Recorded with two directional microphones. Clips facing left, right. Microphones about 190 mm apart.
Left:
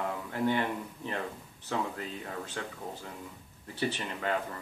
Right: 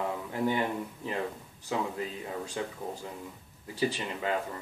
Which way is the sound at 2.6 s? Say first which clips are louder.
Right 4 dB; 15° right (ahead or behind).